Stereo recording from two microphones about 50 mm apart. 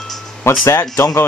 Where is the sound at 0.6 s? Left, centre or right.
Left.